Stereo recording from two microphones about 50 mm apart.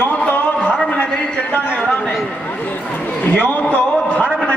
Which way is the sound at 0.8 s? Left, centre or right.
Left.